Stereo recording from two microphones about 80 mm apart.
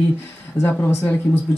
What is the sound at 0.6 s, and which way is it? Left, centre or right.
Speech, left.